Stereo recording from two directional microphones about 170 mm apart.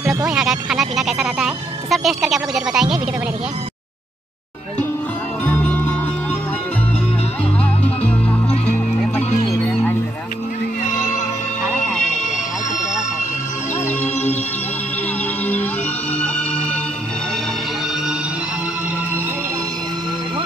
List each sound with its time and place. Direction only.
0.0 s a sound: 20° right (ahead or behind)
0.3 s speech: 5° right (ahead or behind)
5.4 s music: 10° left (ahead or behind)